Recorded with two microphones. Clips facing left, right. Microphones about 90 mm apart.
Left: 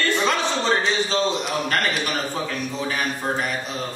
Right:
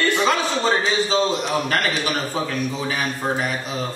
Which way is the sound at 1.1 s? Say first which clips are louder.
Right 2 dB; centre (ahead or behind).